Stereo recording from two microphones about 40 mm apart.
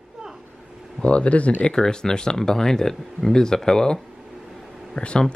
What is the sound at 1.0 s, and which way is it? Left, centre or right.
Speech, left.